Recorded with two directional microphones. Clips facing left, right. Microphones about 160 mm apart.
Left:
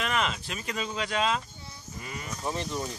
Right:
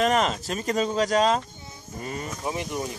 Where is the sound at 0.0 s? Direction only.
40° right (ahead or behind).